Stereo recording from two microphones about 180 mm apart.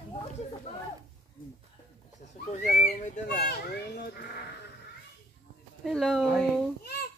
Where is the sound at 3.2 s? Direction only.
60° left (ahead or behind).